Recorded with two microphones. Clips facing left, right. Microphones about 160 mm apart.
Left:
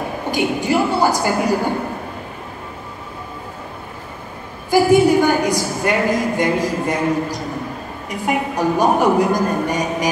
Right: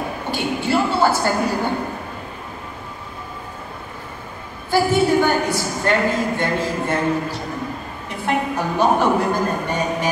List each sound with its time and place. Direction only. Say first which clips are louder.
0.3 s a woman's voice: left 3 dB; 15° left (ahead or behind)
4.6 s a woman's voice: left 4 dB; 15° left (ahead or behind)